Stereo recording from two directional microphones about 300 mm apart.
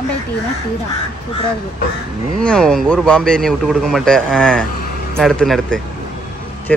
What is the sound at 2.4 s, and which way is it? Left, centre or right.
Speech, centre.